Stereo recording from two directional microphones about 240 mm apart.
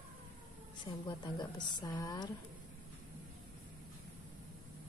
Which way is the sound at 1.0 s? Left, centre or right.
Centre.